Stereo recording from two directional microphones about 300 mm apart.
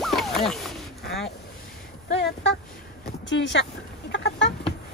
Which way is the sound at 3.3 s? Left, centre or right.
Left.